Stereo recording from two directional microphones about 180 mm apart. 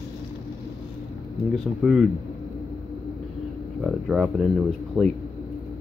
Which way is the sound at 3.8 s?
Centre (ahead or behind).